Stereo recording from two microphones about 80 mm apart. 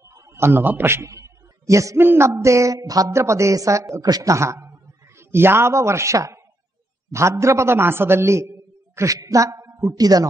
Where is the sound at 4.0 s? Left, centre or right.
Right.